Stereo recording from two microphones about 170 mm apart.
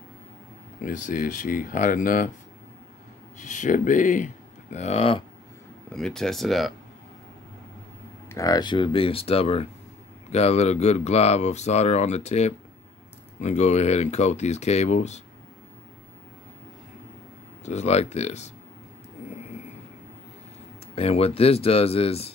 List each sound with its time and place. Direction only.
0.7 s speech: 50° left (ahead or behind)
3.3 s speech: 45° left (ahead or behind)
4.7 s speech: 40° left (ahead or behind)
5.9 s speech: 5° left (ahead or behind)
8.3 s speech: 20° left (ahead or behind); by 15.2 s 40° left (ahead or behind)
17.6 s speech: 40° left (ahead or behind)
20.9 s speech: 35° left (ahead or behind)